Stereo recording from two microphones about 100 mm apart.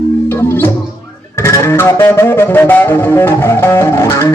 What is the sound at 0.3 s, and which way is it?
Music, 25° left (ahead or behind).